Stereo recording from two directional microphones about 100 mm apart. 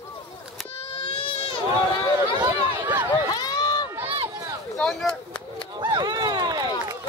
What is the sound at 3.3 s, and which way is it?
Run, 40° left (ahead or behind).